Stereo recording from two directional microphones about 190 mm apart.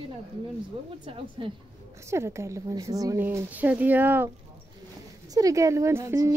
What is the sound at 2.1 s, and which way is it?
A woman's voice, 15° right (ahead or behind).